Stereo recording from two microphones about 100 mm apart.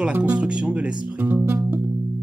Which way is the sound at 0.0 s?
10° right (ahead or behind).